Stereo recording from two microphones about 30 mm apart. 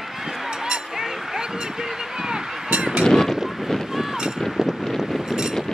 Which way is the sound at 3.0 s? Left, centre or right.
Centre.